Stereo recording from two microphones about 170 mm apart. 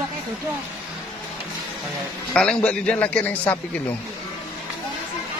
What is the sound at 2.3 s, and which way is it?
A man's voice, 5° left (ahead or behind).